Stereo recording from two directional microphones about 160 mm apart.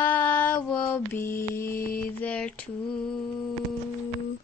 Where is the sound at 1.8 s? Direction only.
65° left (ahead or behind).